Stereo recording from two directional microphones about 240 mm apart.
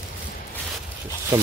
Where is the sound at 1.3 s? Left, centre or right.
Centre.